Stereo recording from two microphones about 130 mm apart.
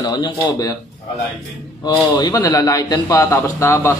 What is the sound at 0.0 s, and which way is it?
Speech, 30° left (ahead or behind).